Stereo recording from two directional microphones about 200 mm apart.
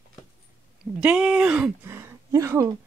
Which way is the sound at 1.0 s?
5° right (ahead or behind).